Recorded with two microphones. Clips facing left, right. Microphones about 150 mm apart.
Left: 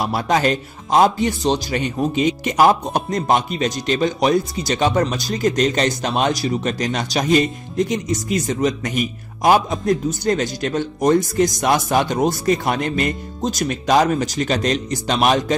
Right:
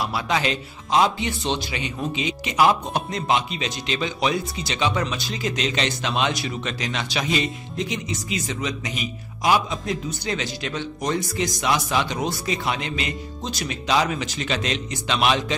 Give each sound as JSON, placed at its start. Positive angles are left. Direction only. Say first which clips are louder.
{"t": 0.0, "sound": "speech", "louder": "left 6 dB", "side_deg": 45}